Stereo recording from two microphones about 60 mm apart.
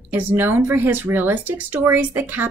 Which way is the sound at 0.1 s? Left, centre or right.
Right.